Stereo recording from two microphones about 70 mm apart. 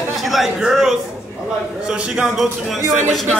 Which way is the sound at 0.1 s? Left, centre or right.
Centre.